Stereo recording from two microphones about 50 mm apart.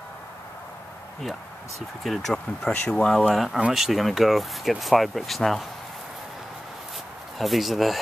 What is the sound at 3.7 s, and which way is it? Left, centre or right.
Speech, centre.